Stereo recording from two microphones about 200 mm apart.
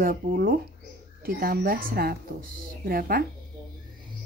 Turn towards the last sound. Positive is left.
turn(degrees=-50)  # may be behind; listen again after turning